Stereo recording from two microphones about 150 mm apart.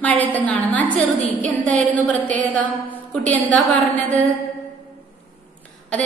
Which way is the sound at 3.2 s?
55° right (ahead or behind).